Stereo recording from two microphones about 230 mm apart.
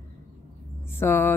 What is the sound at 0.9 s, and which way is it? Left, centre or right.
Speech, centre.